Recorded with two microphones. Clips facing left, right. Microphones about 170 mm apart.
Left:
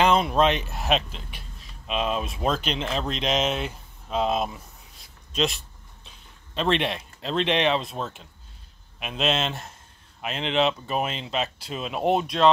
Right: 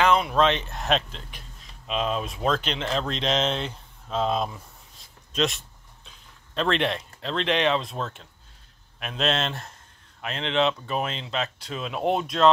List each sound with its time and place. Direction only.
0.0 s speech: 20° left (ahead or behind)
5.3 s speech: centre (ahead or behind)
6.0 s a sound: centre (ahead or behind)
6.7 s speech: 10° left (ahead or behind)
7.3 s speech: 25° left (ahead or behind)
7.8 s speech: 5° left (ahead or behind)